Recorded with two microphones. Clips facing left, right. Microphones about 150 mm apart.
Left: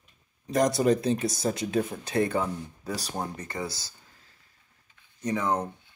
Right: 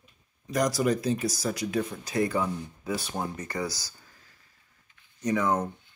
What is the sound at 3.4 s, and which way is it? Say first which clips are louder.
Speech: right 2 dB; 25° left (ahead or behind).